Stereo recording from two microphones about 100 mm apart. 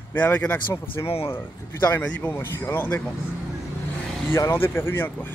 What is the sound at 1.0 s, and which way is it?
Speech, 40° left (ahead or behind).